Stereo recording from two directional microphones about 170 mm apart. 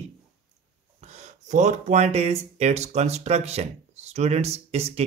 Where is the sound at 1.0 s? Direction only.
40° right (ahead or behind).